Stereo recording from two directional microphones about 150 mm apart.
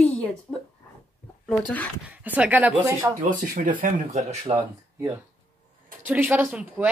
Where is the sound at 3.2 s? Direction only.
60° right (ahead or behind).